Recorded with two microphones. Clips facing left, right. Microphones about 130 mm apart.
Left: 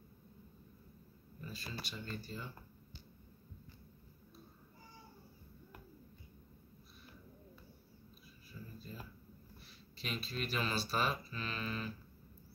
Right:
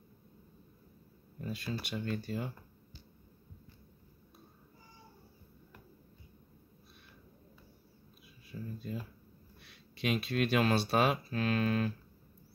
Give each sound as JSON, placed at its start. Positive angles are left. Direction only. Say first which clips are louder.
{"t": 1.4, "sound": "speech", "louder": "right 8 dB", "side_deg": -60}
{"t": 8.5, "sound": "a sound", "louder": "right 9 dB", "side_deg": -70}
{"t": 9.6, "sound": "speech", "louder": "right 11 dB", "side_deg": -65}